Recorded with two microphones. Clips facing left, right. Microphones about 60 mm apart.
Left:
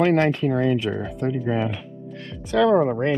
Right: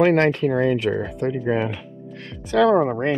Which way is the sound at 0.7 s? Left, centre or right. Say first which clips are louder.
Right 2 dB; right.